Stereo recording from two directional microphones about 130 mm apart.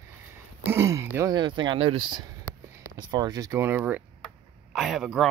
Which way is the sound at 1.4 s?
35° right (ahead or behind).